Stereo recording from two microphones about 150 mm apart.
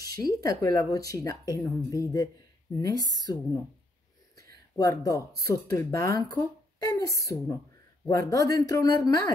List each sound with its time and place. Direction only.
0.1 s speech: 25° left (ahead or behind)
4.7 s speech: 20° left (ahead or behind)